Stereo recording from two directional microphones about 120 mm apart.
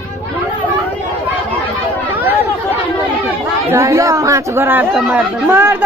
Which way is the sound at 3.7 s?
25° right (ahead or behind).